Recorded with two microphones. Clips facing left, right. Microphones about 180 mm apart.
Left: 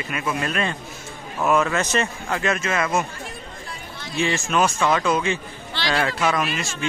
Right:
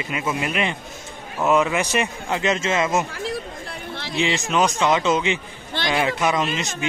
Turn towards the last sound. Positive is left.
turn(degrees=-20)  # may be behind; listen again after turning